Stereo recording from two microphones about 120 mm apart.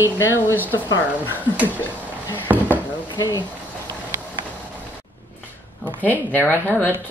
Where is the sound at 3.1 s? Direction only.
35° left (ahead or behind).